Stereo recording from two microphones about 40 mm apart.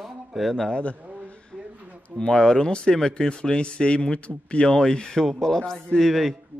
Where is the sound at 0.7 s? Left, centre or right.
Left.